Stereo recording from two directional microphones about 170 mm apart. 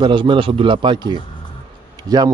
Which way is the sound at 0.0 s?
30° right (ahead or behind).